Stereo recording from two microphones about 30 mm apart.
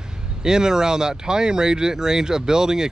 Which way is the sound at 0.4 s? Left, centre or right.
Right.